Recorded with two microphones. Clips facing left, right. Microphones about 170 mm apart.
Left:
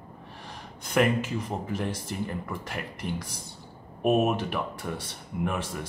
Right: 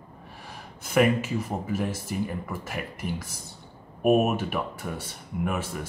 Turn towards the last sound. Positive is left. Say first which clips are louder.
# right 1 dB
turn(degrees=-5)  # may be behind; listen again after turning